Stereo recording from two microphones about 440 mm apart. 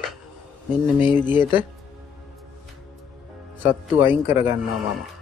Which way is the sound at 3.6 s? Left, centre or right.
Centre.